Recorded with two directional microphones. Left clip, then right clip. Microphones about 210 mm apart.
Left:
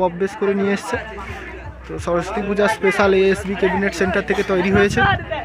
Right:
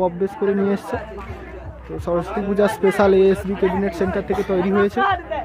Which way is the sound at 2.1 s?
15° right (ahead or behind).